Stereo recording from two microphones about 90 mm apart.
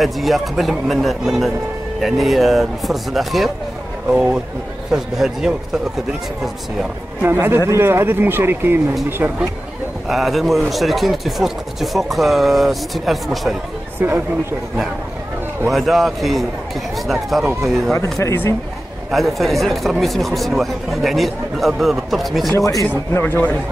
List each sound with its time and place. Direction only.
0.0 s speech: centre (ahead or behind)
7.2 s speech: 25° right (ahead or behind)
10.0 s speech: centre (ahead or behind)
14.0 s speech: 25° right (ahead or behind)
15.7 s speech: centre (ahead or behind)
18.2 s speech: 25° left (ahead or behind)
19.0 s speech: centre (ahead or behind)
22.8 s speech: 20° left (ahead or behind)